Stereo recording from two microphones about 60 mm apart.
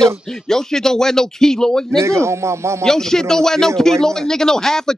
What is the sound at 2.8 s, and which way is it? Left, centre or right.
A man's voice, centre.